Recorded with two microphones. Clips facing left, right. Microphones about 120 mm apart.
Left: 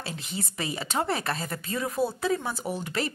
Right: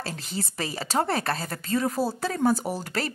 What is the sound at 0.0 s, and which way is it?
Speech, 40° right (ahead or behind).